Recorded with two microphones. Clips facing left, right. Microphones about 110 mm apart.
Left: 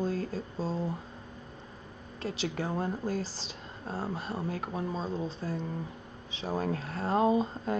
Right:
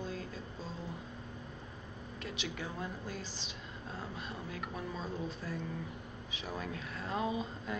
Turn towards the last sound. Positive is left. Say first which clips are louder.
# left 10 dB
turn(degrees=40)  # may be behind; listen again after turning